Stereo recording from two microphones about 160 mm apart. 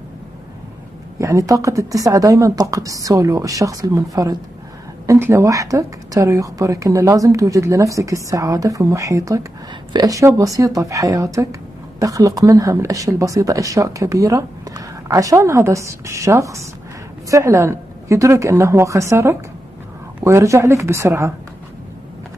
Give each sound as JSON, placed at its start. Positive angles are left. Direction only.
{"t": 1.2, "sound": "a woman's voice", "side_deg": -20}